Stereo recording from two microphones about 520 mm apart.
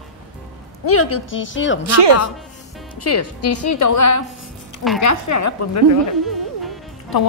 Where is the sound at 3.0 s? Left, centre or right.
Left.